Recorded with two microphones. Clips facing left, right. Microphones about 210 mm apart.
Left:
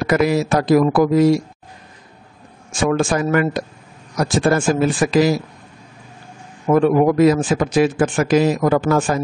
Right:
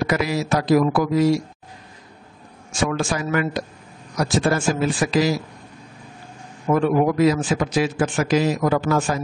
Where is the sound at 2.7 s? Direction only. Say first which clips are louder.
Left 5 dB; 50° left (ahead or behind).